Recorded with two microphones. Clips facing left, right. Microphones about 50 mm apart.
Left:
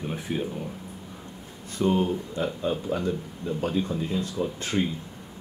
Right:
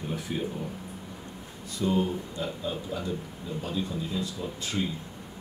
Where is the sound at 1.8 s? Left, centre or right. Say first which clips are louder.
Left 3 dB; left.